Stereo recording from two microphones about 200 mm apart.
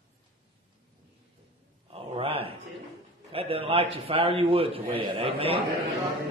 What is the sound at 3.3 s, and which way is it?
A man's voice, 30° right (ahead or behind).